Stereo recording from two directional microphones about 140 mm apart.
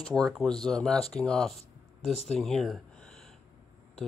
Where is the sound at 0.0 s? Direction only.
5° left (ahead or behind).